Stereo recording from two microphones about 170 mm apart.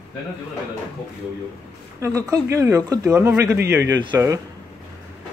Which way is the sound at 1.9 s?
20° right (ahead or behind).